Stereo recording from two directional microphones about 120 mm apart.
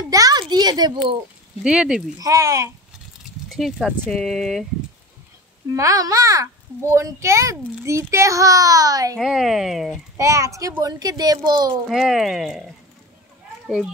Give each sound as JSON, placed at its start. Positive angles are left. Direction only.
{"t": 0.1, "sound": "a sound", "side_deg": -30}
{"t": 1.6, "sound": "speech", "side_deg": -5}
{"t": 2.1, "sound": "a child's voice", "side_deg": -25}
{"t": 3.4, "sound": "speech", "side_deg": 0}
{"t": 5.8, "sound": "a child's voice", "side_deg": -30}
{"t": 9.2, "sound": "speech", "side_deg": 0}
{"t": 10.1, "sound": "a child's voice", "side_deg": -25}
{"t": 11.9, "sound": "speech", "side_deg": 0}